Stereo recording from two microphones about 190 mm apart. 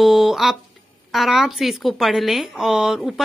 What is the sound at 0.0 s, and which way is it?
A woman's voice, centre (ahead or behind).